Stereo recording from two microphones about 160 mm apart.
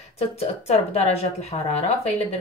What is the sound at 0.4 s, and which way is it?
Speech, 40° left (ahead or behind).